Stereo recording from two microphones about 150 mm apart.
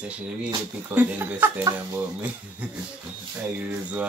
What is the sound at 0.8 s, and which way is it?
Speech, 15° right (ahead or behind).